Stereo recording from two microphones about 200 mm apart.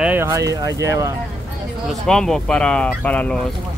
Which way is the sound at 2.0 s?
5° left (ahead or behind).